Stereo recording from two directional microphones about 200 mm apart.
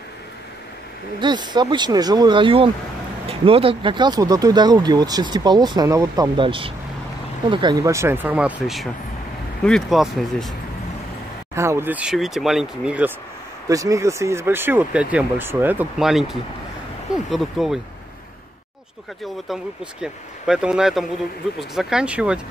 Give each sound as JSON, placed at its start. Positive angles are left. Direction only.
{"t": 1.2, "sound": "speech", "side_deg": -20}
{"t": 11.5, "sound": "speech", "side_deg": -15}
{"t": 19.4, "sound": "speech", "side_deg": 0}